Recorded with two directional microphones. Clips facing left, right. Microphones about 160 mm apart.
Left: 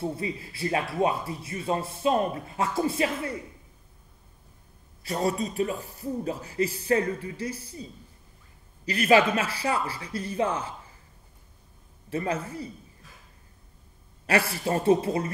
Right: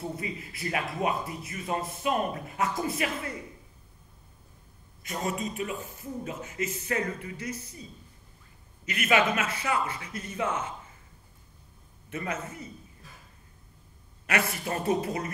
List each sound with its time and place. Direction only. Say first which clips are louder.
0.0 s speech: left 4 dB; 30° left (ahead or behind)
5.0 s speech: left 5 dB; 35° left (ahead or behind)
8.8 s speech: left 5 dB; 35° left (ahead or behind)
12.1 s speech: left 5 dB; 30° left (ahead or behind)
14.2 s speech: left 4 dB; 30° left (ahead or behind)